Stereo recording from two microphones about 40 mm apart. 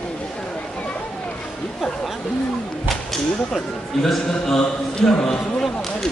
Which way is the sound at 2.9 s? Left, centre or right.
Centre.